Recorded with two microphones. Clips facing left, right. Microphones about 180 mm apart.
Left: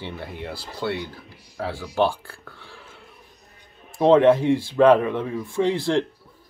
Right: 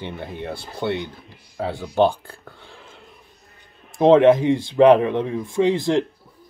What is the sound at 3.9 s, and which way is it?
Speech, 15° right (ahead or behind).